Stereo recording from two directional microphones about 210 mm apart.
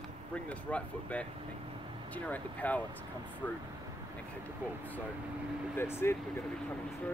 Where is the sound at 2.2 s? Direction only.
5° left (ahead or behind).